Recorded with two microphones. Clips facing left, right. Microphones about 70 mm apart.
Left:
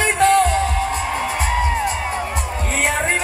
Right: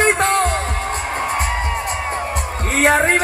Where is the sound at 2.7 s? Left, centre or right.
Right.